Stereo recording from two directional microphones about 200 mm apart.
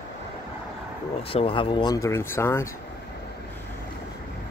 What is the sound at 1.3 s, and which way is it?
Speech, 25° left (ahead or behind).